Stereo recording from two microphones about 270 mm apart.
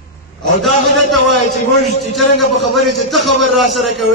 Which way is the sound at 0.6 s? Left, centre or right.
Centre.